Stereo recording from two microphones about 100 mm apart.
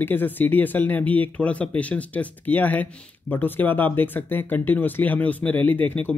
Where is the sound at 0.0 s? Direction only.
20° left (ahead or behind).